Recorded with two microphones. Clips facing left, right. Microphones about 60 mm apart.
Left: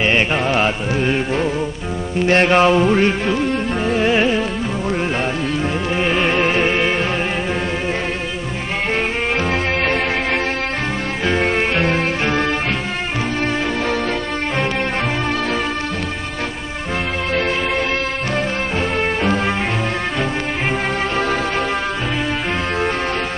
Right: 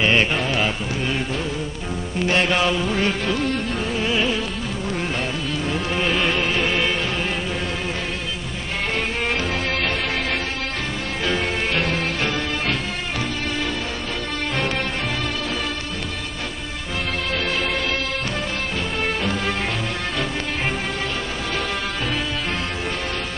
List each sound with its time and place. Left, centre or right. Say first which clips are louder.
0.0 s music: left 2 dB; left
0.5 s music: left 5 dB; left
3.9 s music: left 7 dB; left
5.9 s music: left 4 dB; left
9.4 s music: left 5 dB; left
11.2 s music: left 6 dB; left